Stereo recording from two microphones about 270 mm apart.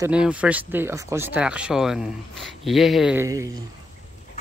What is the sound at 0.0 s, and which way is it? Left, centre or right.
Speech, centre.